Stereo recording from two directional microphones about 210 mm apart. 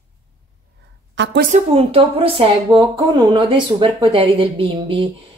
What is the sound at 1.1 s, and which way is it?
Speech, 55° right (ahead or behind).